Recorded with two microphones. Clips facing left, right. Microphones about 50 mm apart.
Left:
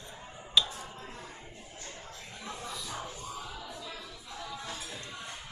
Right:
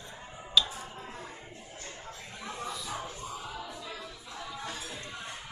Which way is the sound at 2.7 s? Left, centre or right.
Centre.